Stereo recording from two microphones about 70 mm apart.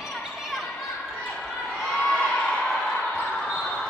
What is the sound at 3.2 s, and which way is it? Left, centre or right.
Basketball bounce, centre.